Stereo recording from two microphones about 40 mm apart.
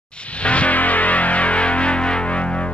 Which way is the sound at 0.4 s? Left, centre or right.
Left.